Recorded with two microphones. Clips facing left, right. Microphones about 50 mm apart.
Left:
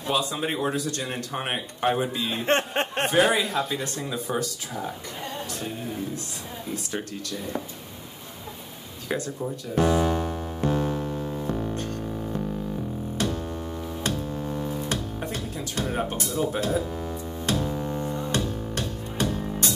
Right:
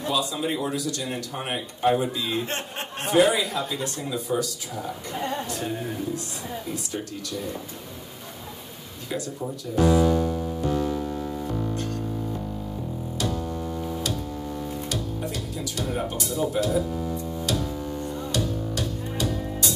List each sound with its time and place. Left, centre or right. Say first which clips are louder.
0.1 s speech: left 1 dB; left
6.7 s speech: left 4 dB; left
9.8 s music: right 2 dB; left
13.2 s music: even; left
14.9 s music: even; left